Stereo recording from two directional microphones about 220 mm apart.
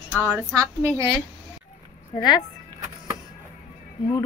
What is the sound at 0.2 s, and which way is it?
Speech, 10° right (ahead or behind).